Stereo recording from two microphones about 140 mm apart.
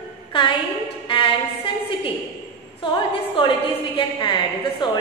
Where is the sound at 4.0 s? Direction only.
35° left (ahead or behind).